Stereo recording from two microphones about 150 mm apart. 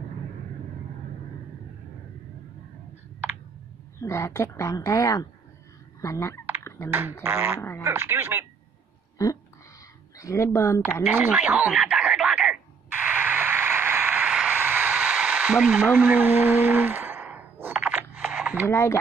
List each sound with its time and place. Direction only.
4.0 s a woman's voice: 20° left (ahead or behind)
6.9 s speech: 15° right (ahead or behind)
10.1 s a woman's voice: 20° left (ahead or behind)
11.1 s speech: 10° right (ahead or behind)
13.0 s a sound: 10° right (ahead or behind)
18.7 s speech: 15° left (ahead or behind)